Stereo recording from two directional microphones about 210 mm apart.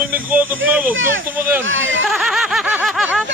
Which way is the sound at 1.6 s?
65° right (ahead or behind).